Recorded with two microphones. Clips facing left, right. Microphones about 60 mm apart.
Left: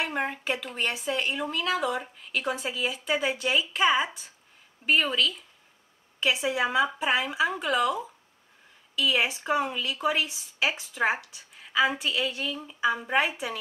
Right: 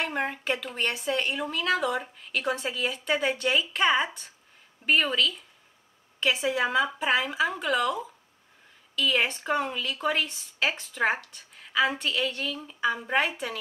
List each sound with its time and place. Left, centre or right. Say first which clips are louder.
0.0 s speech: even; centre